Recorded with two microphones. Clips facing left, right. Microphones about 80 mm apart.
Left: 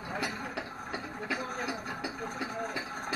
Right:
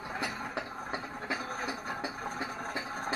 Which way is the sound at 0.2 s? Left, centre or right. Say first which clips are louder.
Right 2 dB; right.